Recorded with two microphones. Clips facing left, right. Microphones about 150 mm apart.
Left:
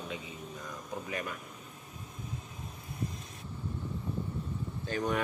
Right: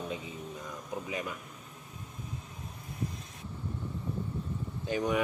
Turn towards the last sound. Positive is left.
turn(degrees=-15)  # may be behind; listen again after turning